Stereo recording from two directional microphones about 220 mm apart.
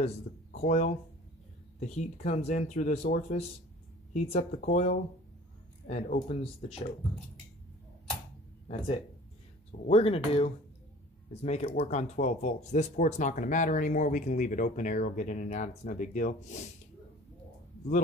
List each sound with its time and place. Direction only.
0.5 s speech: 35° left (ahead or behind)
8.6 s speech: 25° left (ahead or behind)